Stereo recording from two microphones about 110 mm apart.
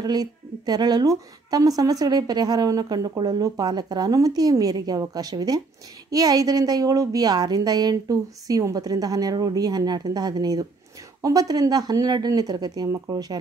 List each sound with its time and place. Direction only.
0.0 s a woman's voice: 40° right (ahead or behind)